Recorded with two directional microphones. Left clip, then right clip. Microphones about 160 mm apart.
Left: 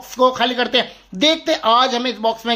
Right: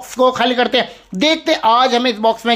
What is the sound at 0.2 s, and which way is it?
Speech, 20° right (ahead or behind).